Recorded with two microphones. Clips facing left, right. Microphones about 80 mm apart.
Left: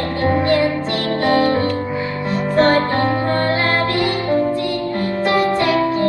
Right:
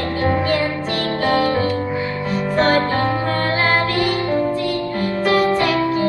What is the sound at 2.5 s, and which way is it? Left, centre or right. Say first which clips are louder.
Music: left 2 dB; left.